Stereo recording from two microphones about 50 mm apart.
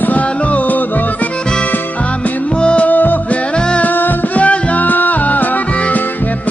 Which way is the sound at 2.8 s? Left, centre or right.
Left.